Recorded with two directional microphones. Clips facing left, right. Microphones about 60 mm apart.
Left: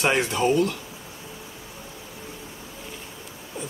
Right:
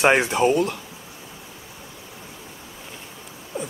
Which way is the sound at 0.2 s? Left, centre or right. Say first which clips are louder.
Right 2 dB; right.